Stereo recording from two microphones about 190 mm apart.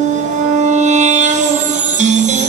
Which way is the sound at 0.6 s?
40° right (ahead or behind).